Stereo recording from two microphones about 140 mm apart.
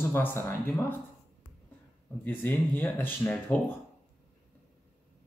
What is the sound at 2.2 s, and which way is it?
Speech, 15° left (ahead or behind).